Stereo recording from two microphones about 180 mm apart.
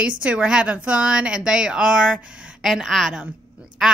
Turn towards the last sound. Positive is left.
turn(degrees=-5)  # may be behind; listen again after turning